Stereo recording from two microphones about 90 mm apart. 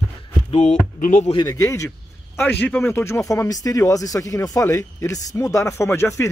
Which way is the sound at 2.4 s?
20° left (ahead or behind).